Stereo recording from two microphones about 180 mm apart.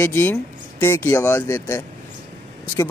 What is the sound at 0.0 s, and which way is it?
Speech, 15° left (ahead or behind).